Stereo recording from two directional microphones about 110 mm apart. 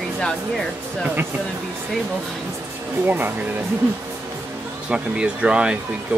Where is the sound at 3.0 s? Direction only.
15° right (ahead or behind).